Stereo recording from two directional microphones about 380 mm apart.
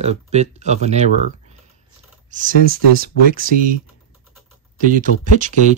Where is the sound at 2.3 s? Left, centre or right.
Right.